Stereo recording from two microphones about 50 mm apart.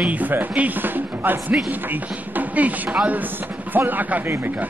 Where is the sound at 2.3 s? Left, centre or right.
Right.